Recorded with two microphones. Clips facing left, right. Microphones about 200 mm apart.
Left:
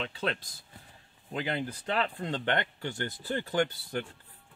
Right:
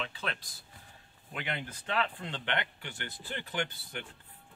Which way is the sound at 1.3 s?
35° left (ahead or behind).